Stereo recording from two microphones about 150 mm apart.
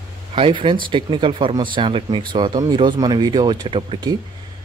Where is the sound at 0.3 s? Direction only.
35° right (ahead or behind).